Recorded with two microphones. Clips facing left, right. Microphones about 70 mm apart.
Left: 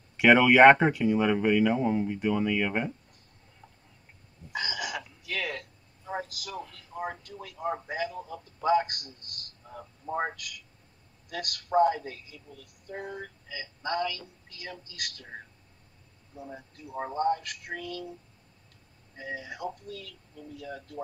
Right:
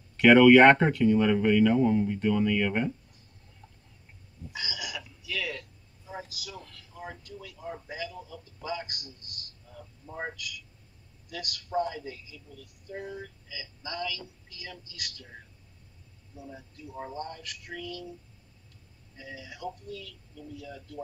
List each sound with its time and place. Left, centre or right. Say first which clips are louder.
0.2 s speech: right 1 dB; centre
4.5 s a sound: left 5 dB; left
6.9 s a woman's voice: left 5 dB; left
16.3 s a woman's voice: left 2 dB; left
19.1 s a woman's voice: left 6 dB; left